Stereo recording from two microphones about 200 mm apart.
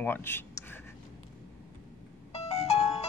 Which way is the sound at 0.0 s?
10° left (ahead or behind).